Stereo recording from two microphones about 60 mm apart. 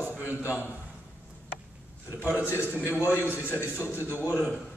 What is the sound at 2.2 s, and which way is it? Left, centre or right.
Speech, left.